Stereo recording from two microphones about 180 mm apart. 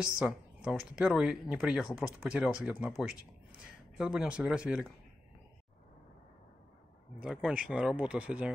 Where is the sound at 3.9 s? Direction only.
5° right (ahead or behind).